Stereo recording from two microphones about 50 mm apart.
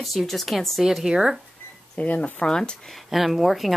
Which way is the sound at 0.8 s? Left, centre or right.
Centre.